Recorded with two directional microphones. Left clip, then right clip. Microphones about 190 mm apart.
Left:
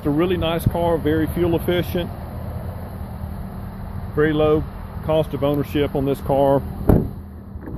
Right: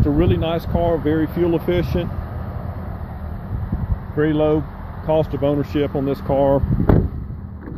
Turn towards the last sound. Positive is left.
turn(degrees=10)  # may be behind; listen again after turning